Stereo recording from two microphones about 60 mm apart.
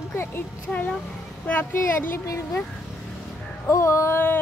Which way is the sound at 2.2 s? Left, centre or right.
Left.